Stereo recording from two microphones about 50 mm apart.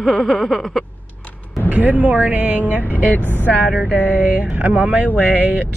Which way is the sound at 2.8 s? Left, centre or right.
Left.